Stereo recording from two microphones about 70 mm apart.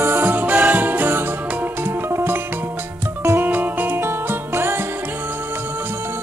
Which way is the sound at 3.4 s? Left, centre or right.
Right.